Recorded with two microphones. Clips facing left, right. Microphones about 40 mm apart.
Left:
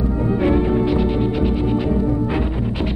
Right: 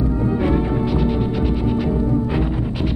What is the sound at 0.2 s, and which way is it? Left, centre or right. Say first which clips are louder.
Music: left 4 dB; centre.